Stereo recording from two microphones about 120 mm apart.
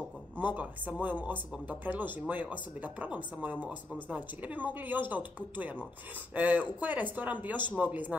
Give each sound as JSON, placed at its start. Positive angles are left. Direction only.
{"t": 0.4, "sound": "speech", "side_deg": -15}